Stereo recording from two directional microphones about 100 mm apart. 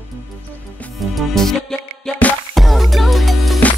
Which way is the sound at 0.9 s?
Centre (ahead or behind).